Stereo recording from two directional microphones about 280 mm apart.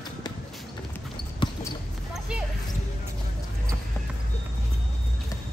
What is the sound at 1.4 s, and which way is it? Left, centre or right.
Basketball bounce, centre.